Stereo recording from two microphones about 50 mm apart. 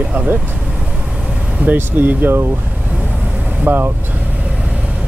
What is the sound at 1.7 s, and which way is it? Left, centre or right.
Speech, right.